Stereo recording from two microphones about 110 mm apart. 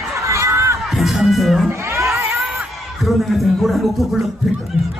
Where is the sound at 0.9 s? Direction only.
Centre (ahead or behind).